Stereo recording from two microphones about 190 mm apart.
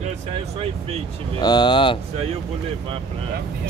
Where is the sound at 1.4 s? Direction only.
20° left (ahead or behind).